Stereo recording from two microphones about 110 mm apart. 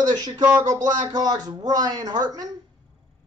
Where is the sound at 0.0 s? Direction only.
40° right (ahead or behind).